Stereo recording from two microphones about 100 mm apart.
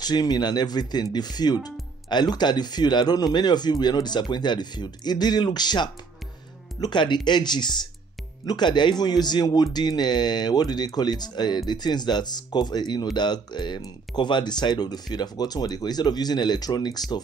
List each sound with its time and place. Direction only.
0.0 s speech: 40° left (ahead or behind)